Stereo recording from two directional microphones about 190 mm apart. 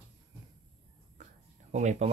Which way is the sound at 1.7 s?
40° right (ahead or behind).